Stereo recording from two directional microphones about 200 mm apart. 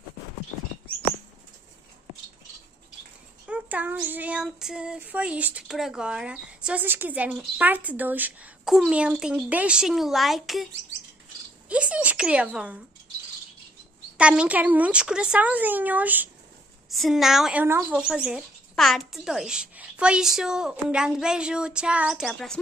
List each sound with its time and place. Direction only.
3.4 s child singing: 5° right (ahead or behind)
11.7 s speech: 5° right (ahead or behind)
14.1 s speech: 5° right (ahead or behind)
16.9 s child singing: centre (ahead or behind)